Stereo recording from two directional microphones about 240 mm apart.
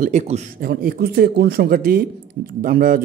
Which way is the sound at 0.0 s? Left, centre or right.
Right.